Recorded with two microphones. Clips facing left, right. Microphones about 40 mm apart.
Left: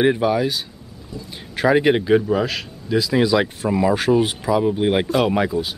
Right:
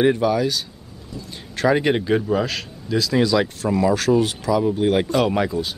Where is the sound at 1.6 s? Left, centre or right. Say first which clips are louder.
Left 2 dB; centre.